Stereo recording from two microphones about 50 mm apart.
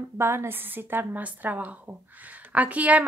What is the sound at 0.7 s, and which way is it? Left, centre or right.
A woman's voice, right.